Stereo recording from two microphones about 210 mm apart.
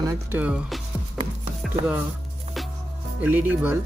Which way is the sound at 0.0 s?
10° right (ahead or behind).